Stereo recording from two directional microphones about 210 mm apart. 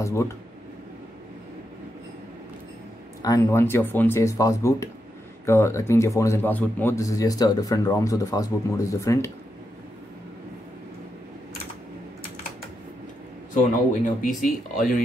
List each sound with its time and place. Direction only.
0.0 s a man's voice: 15° left (ahead or behind)
3.2 s a man's voice: 15° left (ahead or behind)
13.6 s speech: 40° left (ahead or behind)